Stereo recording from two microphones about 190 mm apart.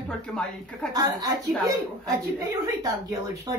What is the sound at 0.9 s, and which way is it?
A woman's voice, 20° right (ahead or behind).